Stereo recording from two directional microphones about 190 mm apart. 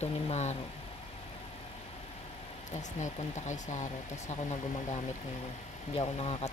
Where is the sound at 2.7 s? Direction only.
40° left (ahead or behind).